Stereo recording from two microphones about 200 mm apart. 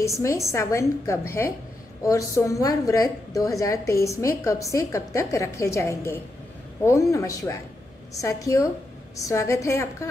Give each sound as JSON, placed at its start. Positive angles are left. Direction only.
{"t": 0.0, "sound": "a woman's voice", "side_deg": 15}